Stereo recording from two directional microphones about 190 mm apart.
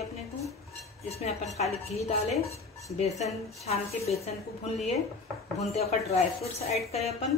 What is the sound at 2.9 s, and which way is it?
Speech, 35° left (ahead or behind).